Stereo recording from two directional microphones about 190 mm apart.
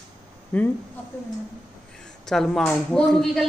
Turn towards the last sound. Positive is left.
turn(degrees=0)  # may be behind; listen again after turning